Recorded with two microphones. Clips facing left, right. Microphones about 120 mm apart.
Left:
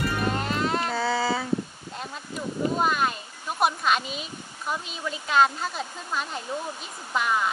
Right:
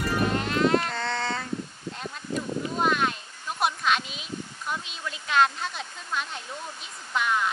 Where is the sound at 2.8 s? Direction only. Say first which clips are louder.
Right 3 dB; 5° left (ahead or behind).